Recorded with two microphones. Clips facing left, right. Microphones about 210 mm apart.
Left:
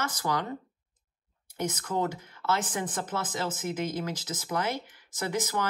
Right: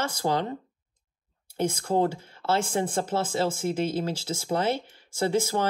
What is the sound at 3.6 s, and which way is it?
Speech, 30° right (ahead or behind).